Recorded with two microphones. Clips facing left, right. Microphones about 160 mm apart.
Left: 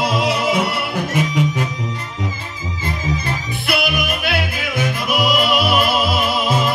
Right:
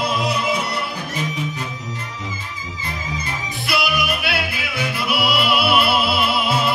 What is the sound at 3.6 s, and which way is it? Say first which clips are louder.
Music: left 1 dB; 50° left (ahead or behind).